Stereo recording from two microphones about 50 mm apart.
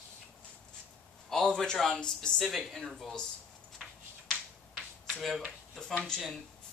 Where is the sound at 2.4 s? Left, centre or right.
Centre.